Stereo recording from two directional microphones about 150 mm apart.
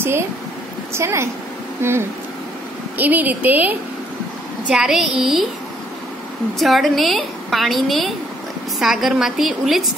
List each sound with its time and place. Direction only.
0.9 s a woman's voice: 15° right (ahead or behind)
6.6 s a woman's voice: centre (ahead or behind)